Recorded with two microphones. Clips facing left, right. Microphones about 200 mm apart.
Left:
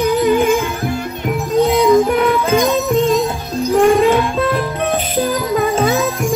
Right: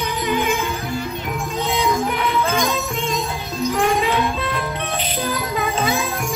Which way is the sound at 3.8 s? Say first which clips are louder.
Left 9 dB; 45° left (ahead or behind).